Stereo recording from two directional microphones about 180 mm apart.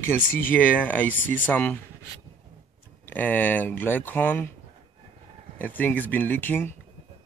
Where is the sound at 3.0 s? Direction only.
10° left (ahead or behind).